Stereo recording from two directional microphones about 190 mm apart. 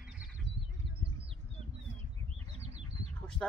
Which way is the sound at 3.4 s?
5° left (ahead or behind).